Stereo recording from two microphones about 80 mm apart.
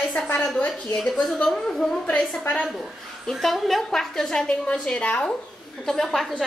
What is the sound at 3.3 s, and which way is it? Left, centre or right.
A woman's voice, centre.